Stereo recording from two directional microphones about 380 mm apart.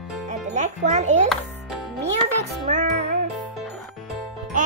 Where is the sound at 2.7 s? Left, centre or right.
Centre.